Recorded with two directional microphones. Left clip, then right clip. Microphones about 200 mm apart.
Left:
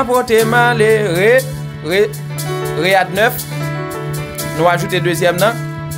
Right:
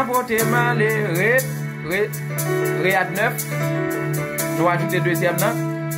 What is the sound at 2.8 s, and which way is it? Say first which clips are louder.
Speech: left 9 dB; 55° left (ahead or behind).